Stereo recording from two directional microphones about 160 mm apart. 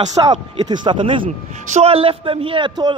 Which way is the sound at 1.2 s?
50° right (ahead or behind).